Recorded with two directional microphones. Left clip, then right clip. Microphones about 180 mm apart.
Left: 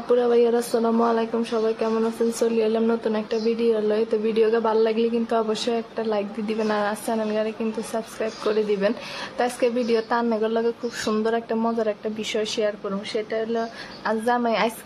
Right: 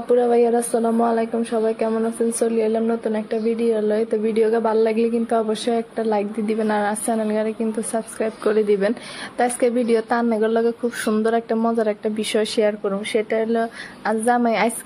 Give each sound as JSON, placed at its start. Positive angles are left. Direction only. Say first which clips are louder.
{"t": 0.1, "sound": "a woman's voice", "louder": "right 2 dB", "side_deg": -10}